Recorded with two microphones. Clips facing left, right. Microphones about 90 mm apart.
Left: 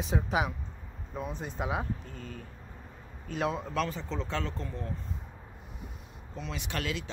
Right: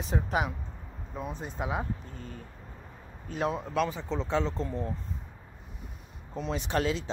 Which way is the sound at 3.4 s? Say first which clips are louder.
Right 2 dB; 5° right (ahead or behind).